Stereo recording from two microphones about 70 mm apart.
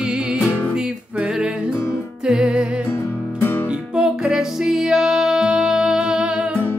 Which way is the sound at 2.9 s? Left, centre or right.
Left.